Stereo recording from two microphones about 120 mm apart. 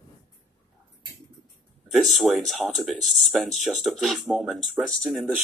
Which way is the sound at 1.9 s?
Centre (ahead or behind).